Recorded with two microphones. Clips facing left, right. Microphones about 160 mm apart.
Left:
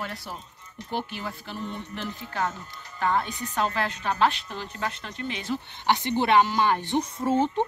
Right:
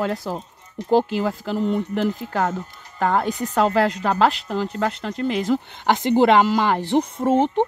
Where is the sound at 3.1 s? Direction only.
90° right.